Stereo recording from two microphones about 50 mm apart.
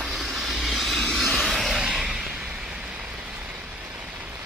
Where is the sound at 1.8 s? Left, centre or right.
Centre.